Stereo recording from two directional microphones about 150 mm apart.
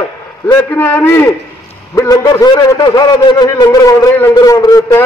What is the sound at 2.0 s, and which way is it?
A man's voice, 25° left (ahead or behind).